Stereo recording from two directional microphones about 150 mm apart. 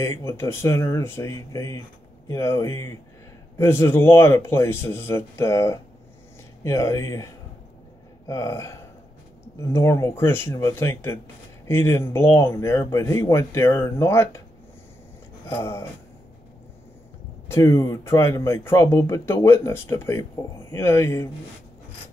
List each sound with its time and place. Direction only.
0.0 s speech: 20° left (ahead or behind)
8.3 s speech: 20° left (ahead or behind)
15.5 s speech: 15° left (ahead or behind)
17.5 s speech: 20° left (ahead or behind)